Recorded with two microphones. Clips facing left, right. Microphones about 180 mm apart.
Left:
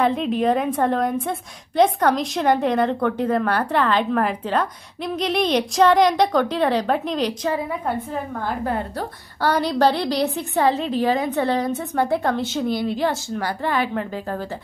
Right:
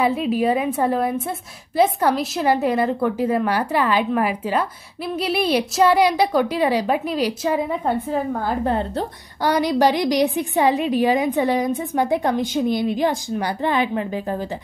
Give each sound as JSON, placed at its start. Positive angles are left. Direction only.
{"t": 0.0, "sound": "a woman's voice", "side_deg": -5}
{"t": 7.8, "sound": "a woman's voice", "side_deg": -30}
{"t": 9.4, "sound": "a woman's voice", "side_deg": -15}